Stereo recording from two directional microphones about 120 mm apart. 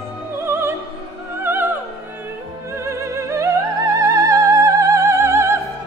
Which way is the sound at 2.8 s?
25° right (ahead or behind).